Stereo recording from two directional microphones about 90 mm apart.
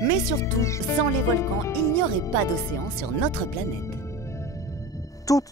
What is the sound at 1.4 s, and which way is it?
Speech, 30° left (ahead or behind).